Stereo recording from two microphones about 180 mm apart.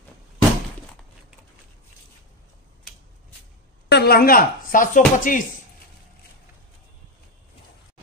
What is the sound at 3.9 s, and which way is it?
Speech, 60° left (ahead or behind).